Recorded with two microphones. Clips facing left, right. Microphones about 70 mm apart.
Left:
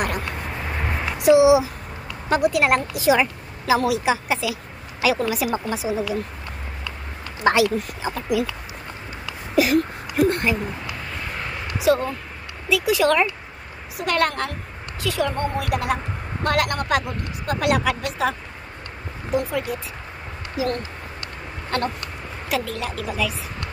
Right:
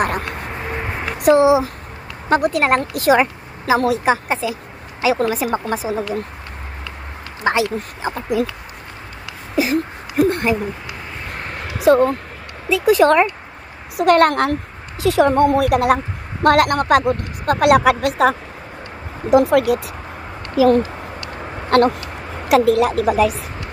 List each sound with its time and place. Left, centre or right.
0.7 s a sound: centre
1.0 s speech: right
7.4 s speech: right
9.6 s whimper: right
10.3 s owl: right
11.3 s a sound: right
11.8 s a woman's voice: right
19.3 s speech: right
21.6 s speech: right